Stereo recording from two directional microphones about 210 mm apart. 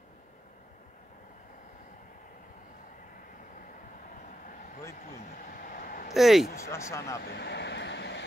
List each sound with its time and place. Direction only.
5.1 s a sound: 35° left (ahead or behind)
6.1 s speech: centre (ahead or behind)
6.5 s speech: 15° left (ahead or behind)
7.2 s vehicle: 50° left (ahead or behind)